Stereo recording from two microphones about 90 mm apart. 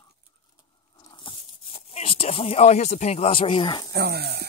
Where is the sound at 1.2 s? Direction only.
85° left.